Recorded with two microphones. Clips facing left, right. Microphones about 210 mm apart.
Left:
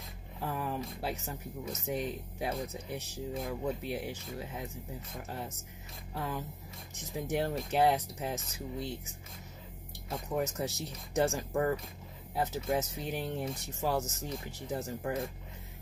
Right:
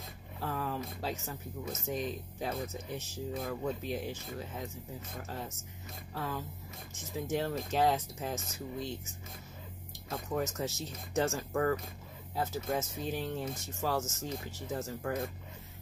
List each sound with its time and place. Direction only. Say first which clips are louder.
0.4 s speech: even; 15° left (ahead or behind)
6.1 s speech: left 1 dB; 15° left (ahead or behind)
10.0 s speech: left 1 dB; 15° left (ahead or behind)